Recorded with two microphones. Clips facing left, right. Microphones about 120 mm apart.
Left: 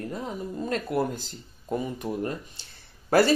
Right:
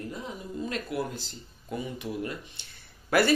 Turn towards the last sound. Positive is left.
turn(degrees=35)  # may be behind; listen again after turning